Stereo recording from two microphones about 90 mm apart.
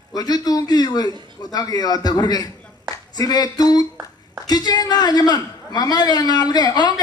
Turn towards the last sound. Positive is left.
turn(degrees=50)  # may be behind; listen again after turning